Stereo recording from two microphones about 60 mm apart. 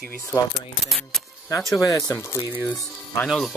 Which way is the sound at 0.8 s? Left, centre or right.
Centre.